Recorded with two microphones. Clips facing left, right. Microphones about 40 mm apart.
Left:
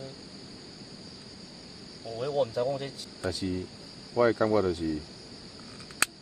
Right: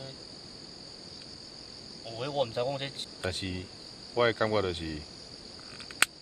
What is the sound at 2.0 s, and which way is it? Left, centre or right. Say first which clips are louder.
Speech: left 3 dB; right.